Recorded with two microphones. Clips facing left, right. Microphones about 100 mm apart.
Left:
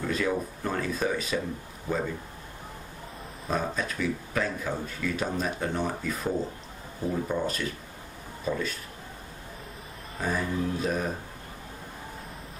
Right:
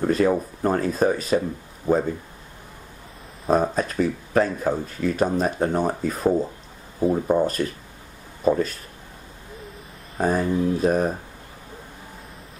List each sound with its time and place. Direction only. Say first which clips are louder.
0.0 s speech: right 8 dB; 45° right (ahead or behind)
3.4 s speech: right 9 dB; 45° right (ahead or behind)
10.1 s speech: right 8 dB; 45° right (ahead or behind)